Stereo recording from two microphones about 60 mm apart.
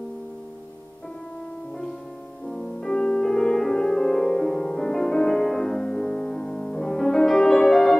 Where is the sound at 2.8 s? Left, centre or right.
Centre.